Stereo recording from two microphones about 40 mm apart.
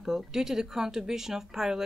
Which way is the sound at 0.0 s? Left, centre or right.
Centre.